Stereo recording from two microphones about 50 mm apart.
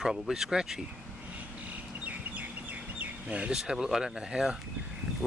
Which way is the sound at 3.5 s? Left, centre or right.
Centre.